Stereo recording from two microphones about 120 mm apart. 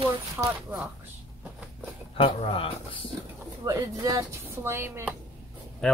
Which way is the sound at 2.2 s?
45° left (ahead or behind).